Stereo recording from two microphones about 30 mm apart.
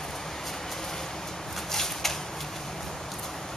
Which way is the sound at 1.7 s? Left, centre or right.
Centre.